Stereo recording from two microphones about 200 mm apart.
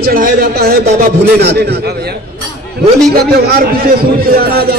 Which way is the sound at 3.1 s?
50° right (ahead or behind).